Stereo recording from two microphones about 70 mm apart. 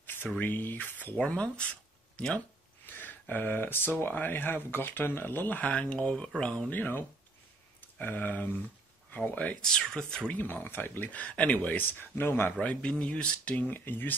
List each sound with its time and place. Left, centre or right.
0.0 s a sound: left
0.4 s speech: left
1.1 s speech: centre
2.9 s speech: left; by 6.5 s centre
6.7 s speech: left
9.6 s speech: centre
10.3 s speech: left
12.0 s speech: left
12.5 s speech: centre